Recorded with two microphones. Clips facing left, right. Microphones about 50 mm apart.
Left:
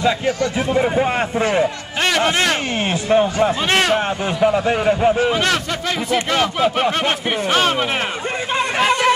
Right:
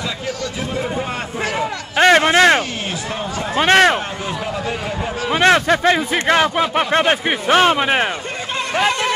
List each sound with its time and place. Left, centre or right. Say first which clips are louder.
0.0 s a man's voice: left 7 dB; left
2.0 s speech: right 6 dB; right
2.9 s a man's voice: left 8 dB; left
3.5 s speech: right 5 dB; right
4.6 s a man's voice: left 8 dB; left
5.3 s speech: right 5 dB; right